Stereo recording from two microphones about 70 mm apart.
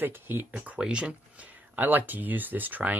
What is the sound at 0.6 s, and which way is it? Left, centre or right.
Speech, centre.